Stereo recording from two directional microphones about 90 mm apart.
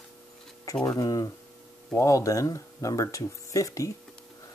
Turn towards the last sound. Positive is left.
turn(degrees=35)  # may be behind; listen again after turning